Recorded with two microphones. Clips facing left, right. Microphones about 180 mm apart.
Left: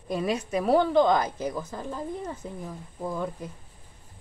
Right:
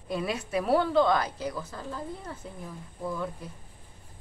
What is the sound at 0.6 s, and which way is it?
Speech, 15° left (ahead or behind).